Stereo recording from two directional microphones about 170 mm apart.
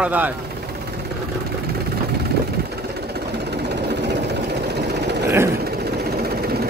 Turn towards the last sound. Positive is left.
turn(degrees=-15)  # may be behind; listen again after turning